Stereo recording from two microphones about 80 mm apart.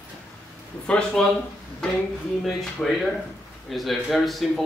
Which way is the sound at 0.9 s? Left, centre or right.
Centre.